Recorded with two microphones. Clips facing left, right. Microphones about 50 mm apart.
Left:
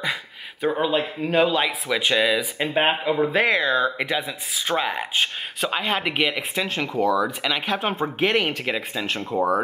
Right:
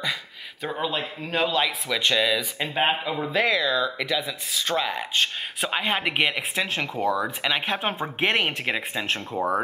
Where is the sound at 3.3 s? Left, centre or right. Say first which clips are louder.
Right 1 dB; left.